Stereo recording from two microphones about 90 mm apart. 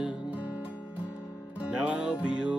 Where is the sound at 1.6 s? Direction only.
10° right (ahead or behind).